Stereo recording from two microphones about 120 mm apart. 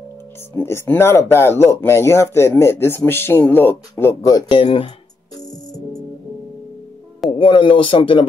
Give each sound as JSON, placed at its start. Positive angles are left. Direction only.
{"t": 0.6, "sound": "speech", "side_deg": 20}
{"t": 4.0, "sound": "speech", "side_deg": 30}
{"t": 4.6, "sound": "speech", "side_deg": 45}
{"t": 7.2, "sound": "speech", "side_deg": 45}